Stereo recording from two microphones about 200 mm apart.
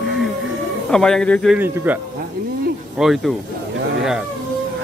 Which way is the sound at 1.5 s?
10° right (ahead or behind).